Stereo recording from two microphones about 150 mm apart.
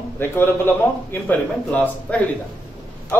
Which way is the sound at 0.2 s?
15° left (ahead or behind).